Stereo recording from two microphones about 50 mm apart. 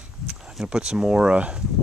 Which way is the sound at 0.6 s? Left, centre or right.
Centre.